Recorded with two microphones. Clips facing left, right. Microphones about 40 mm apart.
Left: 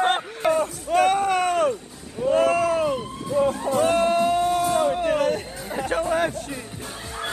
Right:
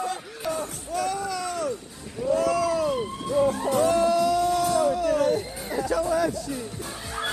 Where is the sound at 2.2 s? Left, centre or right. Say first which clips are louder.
Left 4 dB; left.